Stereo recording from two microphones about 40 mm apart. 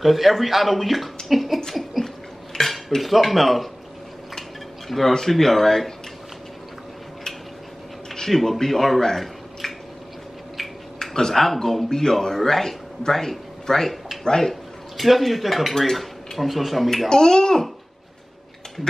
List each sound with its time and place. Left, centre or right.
0.0 s speech: centre
1.3 s a sound: centre
2.5 s cutlery: centre
4.4 s dishes: centre
5.3 s speech: centre
8.1 s speech: centre
11.0 s a man's voice: centre
14.5 s speech: centre
17.1 s a child's voice: centre